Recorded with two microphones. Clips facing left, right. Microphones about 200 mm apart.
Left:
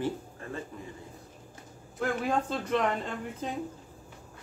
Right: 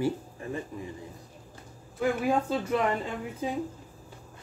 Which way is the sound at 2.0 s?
10° right (ahead or behind).